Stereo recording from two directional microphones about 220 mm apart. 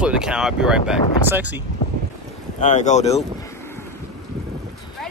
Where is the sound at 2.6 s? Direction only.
35° left (ahead or behind).